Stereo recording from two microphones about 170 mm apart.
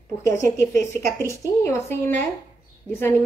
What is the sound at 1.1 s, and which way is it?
A woman's voice, 15° left (ahead or behind).